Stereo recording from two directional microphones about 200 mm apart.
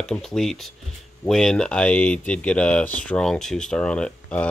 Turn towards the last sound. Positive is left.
turn(degrees=5)  # may be behind; listen again after turning